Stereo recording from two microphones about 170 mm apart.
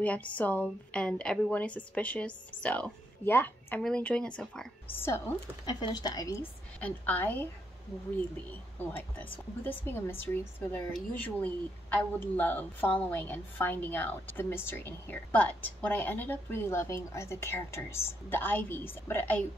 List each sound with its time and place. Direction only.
0.0 s speech: 10° left (ahead or behind)
5.7 s speech: 25° left (ahead or behind)
6.8 s speech: 10° left (ahead or behind)
8.7 s speech: 10° left (ahead or behind)